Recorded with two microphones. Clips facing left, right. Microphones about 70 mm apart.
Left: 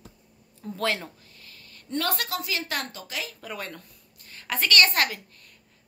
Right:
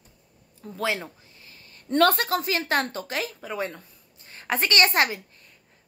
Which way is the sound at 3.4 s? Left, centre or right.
Centre.